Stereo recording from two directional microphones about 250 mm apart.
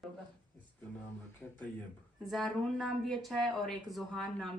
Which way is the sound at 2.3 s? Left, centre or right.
Centre.